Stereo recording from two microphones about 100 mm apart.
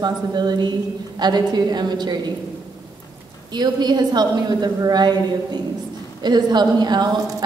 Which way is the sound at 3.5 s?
45° right (ahead or behind).